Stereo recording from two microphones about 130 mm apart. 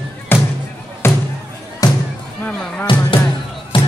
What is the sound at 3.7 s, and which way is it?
Music, 40° left (ahead or behind).